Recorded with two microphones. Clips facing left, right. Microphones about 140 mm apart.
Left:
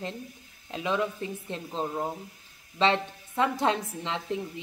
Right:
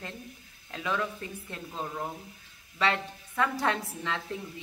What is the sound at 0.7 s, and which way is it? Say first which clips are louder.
A woman's voice: left 3 dB; 20° left (ahead or behind).